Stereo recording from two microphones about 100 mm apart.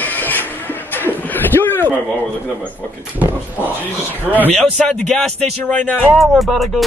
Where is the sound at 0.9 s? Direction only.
20° left (ahead or behind).